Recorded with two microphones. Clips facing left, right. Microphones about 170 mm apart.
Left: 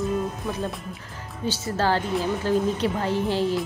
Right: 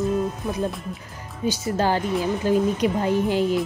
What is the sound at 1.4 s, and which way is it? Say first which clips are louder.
Speech: right 2 dB; 10° right (ahead or behind).